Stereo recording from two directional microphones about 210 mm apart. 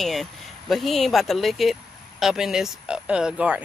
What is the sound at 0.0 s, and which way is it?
Speech, centre (ahead or behind).